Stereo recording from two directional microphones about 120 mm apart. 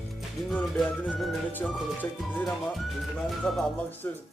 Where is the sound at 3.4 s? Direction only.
5° left (ahead or behind).